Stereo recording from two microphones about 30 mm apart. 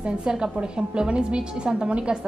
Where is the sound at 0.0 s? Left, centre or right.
Right.